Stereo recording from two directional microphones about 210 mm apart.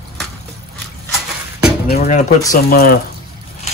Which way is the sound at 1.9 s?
35° left (ahead or behind).